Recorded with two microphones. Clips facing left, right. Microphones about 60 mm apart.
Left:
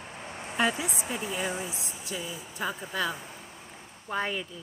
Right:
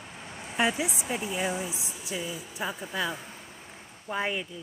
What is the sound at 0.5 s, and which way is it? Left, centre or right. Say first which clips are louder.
A woman's voice: right 1 dB; centre.